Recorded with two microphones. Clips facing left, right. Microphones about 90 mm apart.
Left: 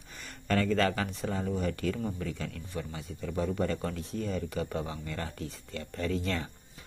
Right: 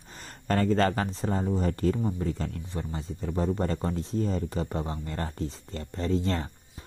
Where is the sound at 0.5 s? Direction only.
40° right (ahead or behind).